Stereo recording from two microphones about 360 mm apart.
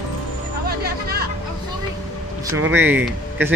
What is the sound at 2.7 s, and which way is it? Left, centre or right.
Speech, centre.